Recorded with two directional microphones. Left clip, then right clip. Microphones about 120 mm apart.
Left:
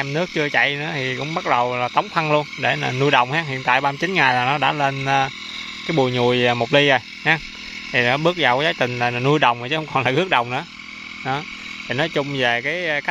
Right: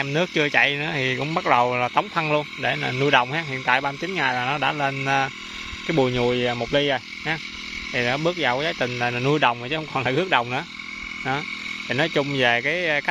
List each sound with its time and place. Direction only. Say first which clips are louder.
0.0 s speech: even; 5° left (ahead or behind)
2.1 s speech: left 4 dB; 20° left (ahead or behind)
4.0 s speech: left 6 dB; 30° left (ahead or behind); by 10.6 s 15° left (ahead or behind)
11.9 s speech: left 1 dB; 5° left (ahead or behind)